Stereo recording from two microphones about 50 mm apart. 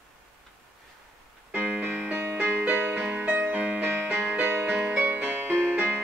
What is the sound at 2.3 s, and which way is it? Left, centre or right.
Music, right.